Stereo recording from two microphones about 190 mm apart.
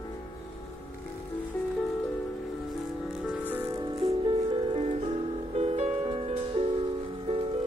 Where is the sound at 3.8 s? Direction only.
20° right (ahead or behind).